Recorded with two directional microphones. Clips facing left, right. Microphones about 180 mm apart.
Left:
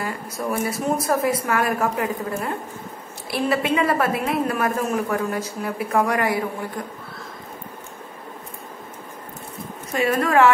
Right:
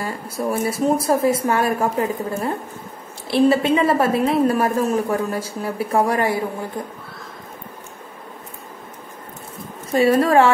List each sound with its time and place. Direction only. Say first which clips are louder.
0.0 s a woman's voice: right 3 dB; 30° right (ahead or behind)
9.9 s a woman's voice: right 4 dB; 35° right (ahead or behind)